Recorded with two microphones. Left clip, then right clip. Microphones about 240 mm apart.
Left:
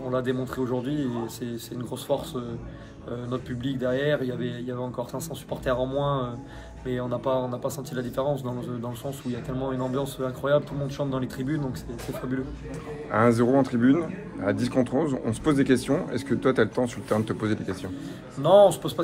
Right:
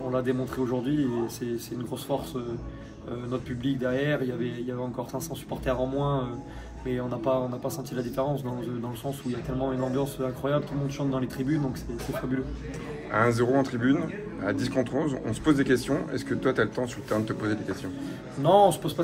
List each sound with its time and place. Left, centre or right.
0.1 s speech: centre
3.3 s speech: centre
5.7 s speech: centre
9.9 s speech: centre
13.1 s speech: left
18.4 s speech: centre